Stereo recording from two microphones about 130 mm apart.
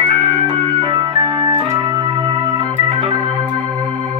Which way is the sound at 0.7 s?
40° right (ahead or behind).